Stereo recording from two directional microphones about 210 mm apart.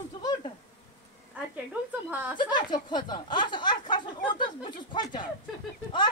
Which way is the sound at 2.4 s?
20° left (ahead or behind).